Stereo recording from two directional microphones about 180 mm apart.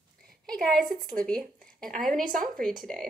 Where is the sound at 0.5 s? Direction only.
5° left (ahead or behind).